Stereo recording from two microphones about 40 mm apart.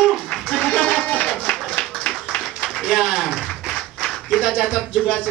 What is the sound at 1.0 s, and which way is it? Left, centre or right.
Music, left.